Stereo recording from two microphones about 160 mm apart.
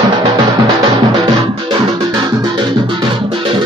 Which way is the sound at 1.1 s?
25° right (ahead or behind).